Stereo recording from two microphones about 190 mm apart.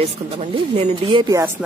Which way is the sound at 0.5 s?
25° right (ahead or behind).